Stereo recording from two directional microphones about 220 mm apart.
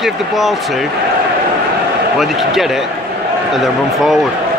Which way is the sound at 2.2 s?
Centre (ahead or behind).